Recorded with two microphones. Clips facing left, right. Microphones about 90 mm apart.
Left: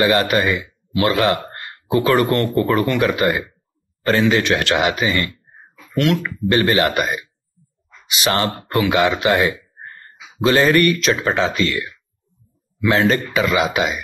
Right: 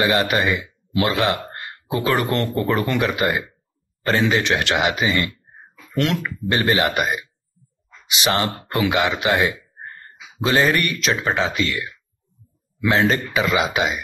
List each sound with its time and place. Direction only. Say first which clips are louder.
0.0 s speech: left 3 dB; 20° right (ahead or behind)
10.4 s speech: left 4 dB; 20° right (ahead or behind)